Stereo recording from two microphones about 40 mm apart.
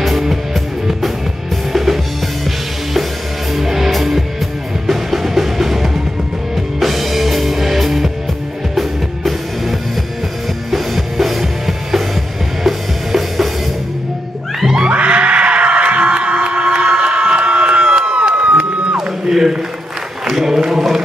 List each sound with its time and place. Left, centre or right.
0.0 s music: centre
1.7 s music: centre
3.5 s music: centre
14.9 s music: right
18.9 s a sound: centre
20.2 s choir: centre